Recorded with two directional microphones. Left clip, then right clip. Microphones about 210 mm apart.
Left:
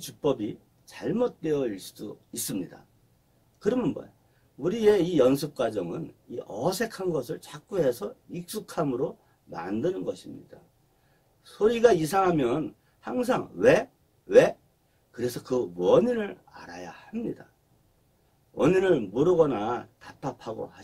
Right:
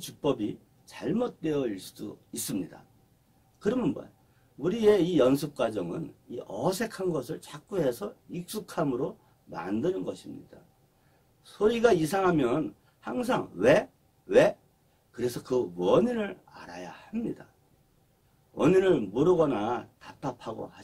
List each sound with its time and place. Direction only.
0.0 s a man's voice: 15° left (ahead or behind)
11.4 s a man's voice: 15° left (ahead or behind)
18.5 s a man's voice: 15° left (ahead or behind)